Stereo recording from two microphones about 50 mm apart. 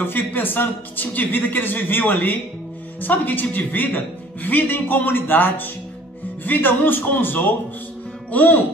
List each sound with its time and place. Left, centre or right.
0.0 s speech: left